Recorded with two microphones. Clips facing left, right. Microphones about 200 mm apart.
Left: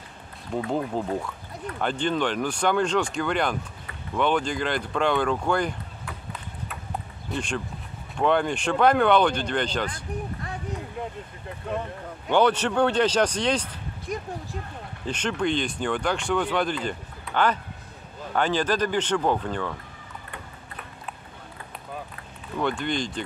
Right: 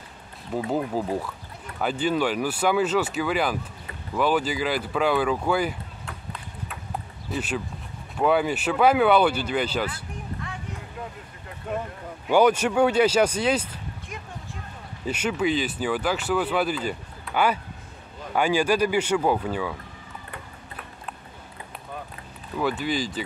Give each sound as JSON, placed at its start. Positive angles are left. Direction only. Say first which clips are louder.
{"t": 0.7, "sound": "speech", "louder": "right 1 dB", "side_deg": -5}
{"t": 7.2, "sound": "speech", "louder": "right 1 dB", "side_deg": -5}
{"t": 12.3, "sound": "speech", "louder": "right 2 dB", "side_deg": -10}
{"t": 14.0, "sound": "speech", "louder": "left 7 dB", "side_deg": 40}
{"t": 15.0, "sound": "speech", "louder": "right 2 dB", "side_deg": -10}
{"t": 22.6, "sound": "speech", "louder": "right 1 dB", "side_deg": -5}